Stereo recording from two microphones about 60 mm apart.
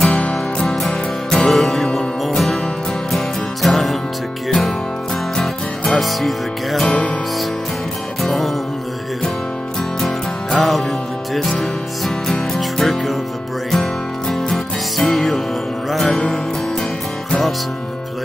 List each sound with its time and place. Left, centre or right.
0.2 s music: centre
6.9 s music: centre
8.2 s music: centre
9.8 s music: centre